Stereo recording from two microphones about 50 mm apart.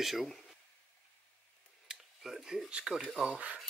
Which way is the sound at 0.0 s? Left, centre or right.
Centre.